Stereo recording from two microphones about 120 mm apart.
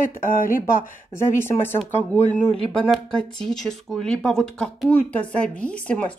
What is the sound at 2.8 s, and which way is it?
Speech, 5° left (ahead or behind).